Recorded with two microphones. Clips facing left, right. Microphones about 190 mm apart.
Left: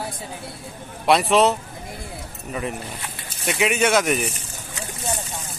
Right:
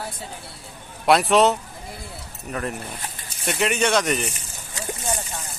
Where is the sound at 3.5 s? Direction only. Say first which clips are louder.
Left 2 dB; centre (ahead or behind).